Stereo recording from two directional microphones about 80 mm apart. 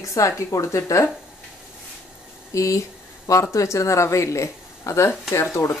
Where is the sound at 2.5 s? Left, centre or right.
Left.